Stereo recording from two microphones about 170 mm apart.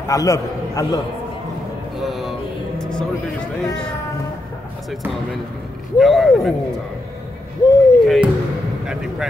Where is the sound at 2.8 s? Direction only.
5° left (ahead or behind).